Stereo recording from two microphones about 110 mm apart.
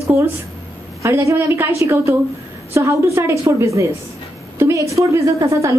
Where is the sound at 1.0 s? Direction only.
25° right (ahead or behind).